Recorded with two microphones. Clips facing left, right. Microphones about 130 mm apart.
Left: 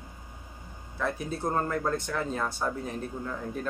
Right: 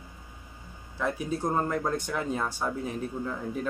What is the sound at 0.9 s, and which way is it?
Speech, 10° right (ahead or behind).